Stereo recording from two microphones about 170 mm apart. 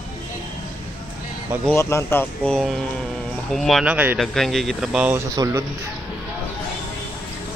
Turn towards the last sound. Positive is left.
turn(degrees=-20)  # may be behind; listen again after turning